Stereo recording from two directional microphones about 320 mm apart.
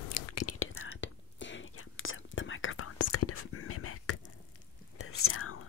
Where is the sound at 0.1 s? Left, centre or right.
Left.